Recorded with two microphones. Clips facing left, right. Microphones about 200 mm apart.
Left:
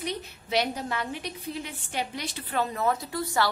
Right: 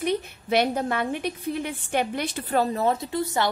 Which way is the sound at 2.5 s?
35° right (ahead or behind).